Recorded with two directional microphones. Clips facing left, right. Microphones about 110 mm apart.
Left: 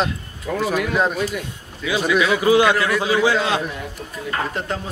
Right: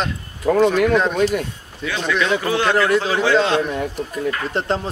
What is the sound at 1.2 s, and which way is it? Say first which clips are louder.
Speech: right 6 dB; 55° right (ahead or behind).